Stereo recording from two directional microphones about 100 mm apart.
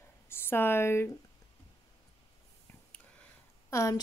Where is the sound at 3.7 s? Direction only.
30° left (ahead or behind).